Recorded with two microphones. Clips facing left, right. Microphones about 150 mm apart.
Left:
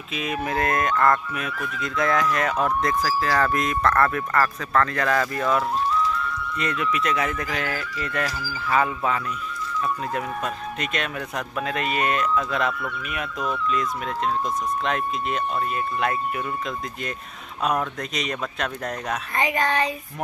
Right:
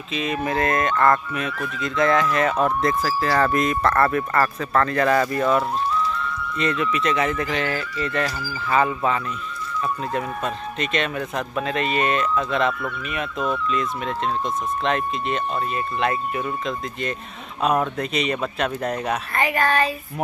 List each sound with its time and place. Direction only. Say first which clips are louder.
0.1 s speech: right 3 dB; 5° left (ahead or behind)
19.3 s speech: right 2 dB; 15° left (ahead or behind)